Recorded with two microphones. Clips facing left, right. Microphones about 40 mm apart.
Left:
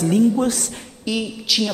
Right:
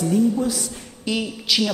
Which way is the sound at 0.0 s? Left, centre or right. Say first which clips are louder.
Left 3 dB; left.